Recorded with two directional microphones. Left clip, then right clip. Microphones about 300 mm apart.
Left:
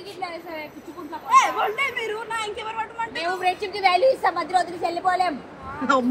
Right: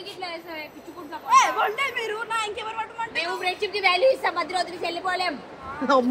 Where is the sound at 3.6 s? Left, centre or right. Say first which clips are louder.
Even; centre.